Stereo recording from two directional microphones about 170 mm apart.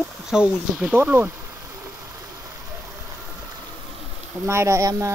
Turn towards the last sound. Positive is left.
turn(degrees=-20)  # may be behind; listen again after turning